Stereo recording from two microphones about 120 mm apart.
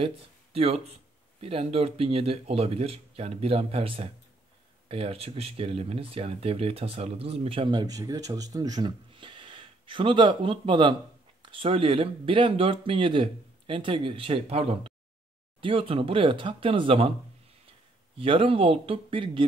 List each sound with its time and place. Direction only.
0.0 s speech: 55° right (ahead or behind)
18.1 s speech: 50° right (ahead or behind)